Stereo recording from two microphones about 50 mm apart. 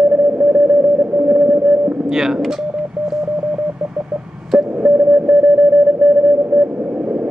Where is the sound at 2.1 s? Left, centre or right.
Centre.